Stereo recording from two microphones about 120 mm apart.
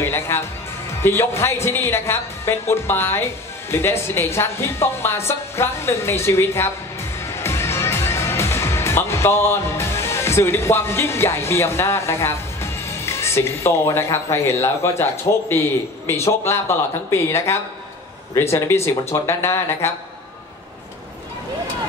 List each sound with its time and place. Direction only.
0.0 s a woman's voice: 20° left (ahead or behind)